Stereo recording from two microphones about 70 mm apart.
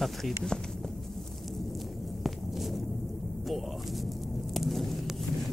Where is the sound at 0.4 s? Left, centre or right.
Centre.